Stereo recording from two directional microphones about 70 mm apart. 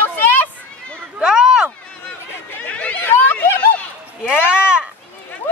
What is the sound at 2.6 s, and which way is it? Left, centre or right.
Chatter, centre.